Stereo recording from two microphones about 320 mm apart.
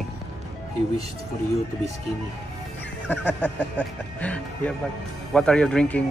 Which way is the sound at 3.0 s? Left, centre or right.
Centre.